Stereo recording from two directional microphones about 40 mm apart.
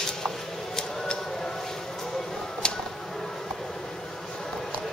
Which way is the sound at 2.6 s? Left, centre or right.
Left.